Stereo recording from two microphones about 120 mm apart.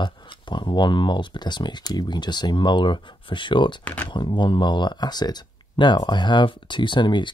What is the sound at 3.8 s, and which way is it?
Speech, 15° left (ahead or behind).